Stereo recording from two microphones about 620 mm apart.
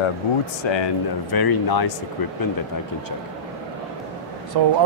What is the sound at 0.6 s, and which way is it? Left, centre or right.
Speech, left.